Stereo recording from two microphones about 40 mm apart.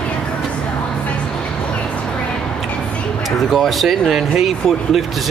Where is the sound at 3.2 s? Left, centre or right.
Centre.